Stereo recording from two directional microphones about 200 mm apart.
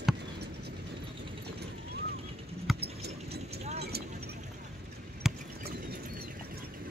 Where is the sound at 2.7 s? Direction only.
Centre (ahead or behind).